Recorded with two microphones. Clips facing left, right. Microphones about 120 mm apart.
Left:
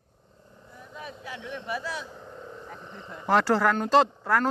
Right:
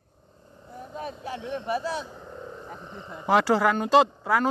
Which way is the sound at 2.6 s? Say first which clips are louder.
Right 2 dB; 15° right (ahead or behind).